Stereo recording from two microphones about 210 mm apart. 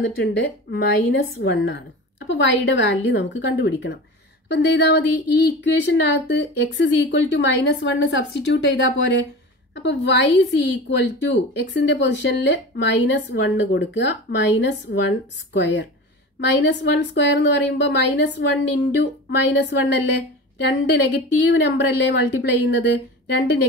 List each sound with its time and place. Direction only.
0.0 s a woman's voice: 55° left (ahead or behind)